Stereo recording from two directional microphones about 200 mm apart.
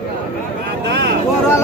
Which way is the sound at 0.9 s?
55° right (ahead or behind).